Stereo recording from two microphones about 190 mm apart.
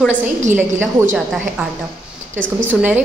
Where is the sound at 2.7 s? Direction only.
10° right (ahead or behind).